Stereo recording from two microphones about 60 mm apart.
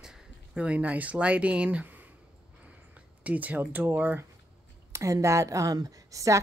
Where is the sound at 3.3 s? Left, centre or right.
Right.